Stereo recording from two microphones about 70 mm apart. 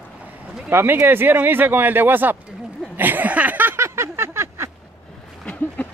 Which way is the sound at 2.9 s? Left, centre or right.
Right.